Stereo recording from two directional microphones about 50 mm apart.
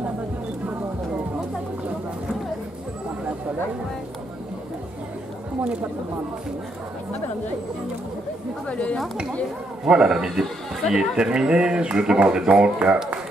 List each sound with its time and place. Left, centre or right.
5.6 s speech: right
8.6 s speech: left
9.8 s speech: centre